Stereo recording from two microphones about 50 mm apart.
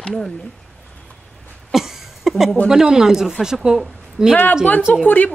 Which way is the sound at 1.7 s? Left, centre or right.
Centre.